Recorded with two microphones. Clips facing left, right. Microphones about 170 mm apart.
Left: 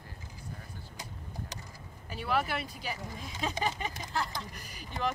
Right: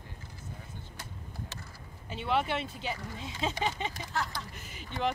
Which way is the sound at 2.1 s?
25° right (ahead or behind).